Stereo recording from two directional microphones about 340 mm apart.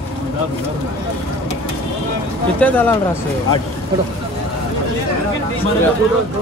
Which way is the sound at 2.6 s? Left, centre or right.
Centre.